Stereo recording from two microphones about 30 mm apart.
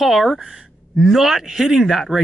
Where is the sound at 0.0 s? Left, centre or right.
Centre.